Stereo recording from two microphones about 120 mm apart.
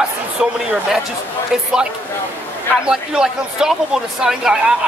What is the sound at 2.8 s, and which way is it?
Speech, 5° right (ahead or behind).